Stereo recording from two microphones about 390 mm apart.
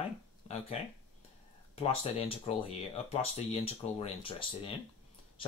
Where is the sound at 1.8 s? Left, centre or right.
Centre.